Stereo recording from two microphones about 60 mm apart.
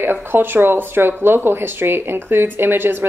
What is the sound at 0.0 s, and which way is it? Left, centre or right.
Speech, right.